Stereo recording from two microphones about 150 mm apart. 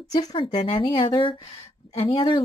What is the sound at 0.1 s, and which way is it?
Speech, 25° left (ahead or behind).